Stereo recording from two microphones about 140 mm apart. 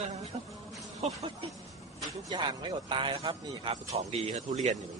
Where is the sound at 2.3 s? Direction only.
35° right (ahead or behind); by 4.5 s 55° right (ahead or behind).